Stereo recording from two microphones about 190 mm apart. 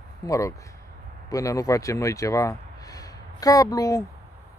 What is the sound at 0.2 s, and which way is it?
Speech, 15° left (ahead or behind).